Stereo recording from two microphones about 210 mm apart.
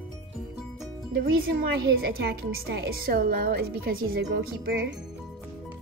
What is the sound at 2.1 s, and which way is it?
A woman's voice, 50° right (ahead or behind).